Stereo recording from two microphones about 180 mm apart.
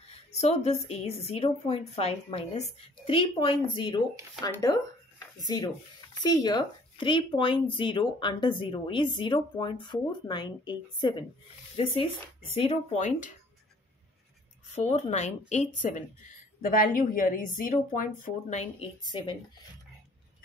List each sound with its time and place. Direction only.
0.3 s a woman's voice: 35° left (ahead or behind); by 4.7 s 20° left (ahead or behind)
6.1 s a woman's voice: 20° left (ahead or behind); by 13.3 s 40° left (ahead or behind)
14.8 s a woman's voice: 40° left (ahead or behind)
16.6 s speech: 50° left (ahead or behind)
19.0 s speech: 25° left (ahead or behind)